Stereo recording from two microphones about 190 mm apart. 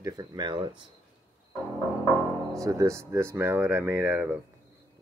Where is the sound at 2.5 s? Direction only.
15° right (ahead or behind).